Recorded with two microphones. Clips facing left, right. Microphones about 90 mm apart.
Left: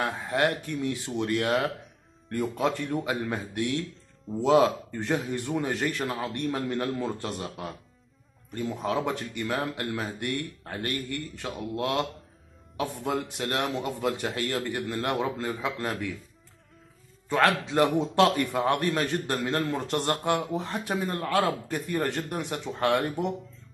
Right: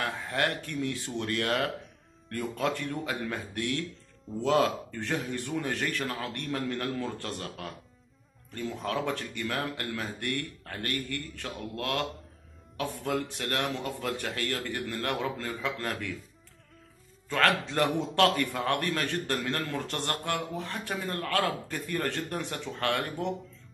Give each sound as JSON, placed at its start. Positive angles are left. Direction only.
{"t": 0.0, "sound": "a man's voice", "side_deg": 20}
{"t": 17.3, "sound": "a man's voice", "side_deg": 15}